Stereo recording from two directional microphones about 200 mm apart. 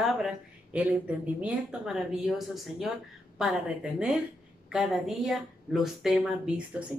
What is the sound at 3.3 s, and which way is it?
Speech, 5° right (ahead or behind).